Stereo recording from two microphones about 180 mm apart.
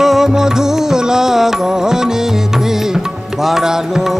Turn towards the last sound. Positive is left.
turn(degrees=0)  # may be behind; listen again after turning